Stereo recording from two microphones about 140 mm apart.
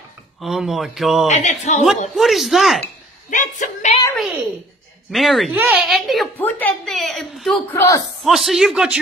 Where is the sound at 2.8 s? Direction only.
60° left (ahead or behind).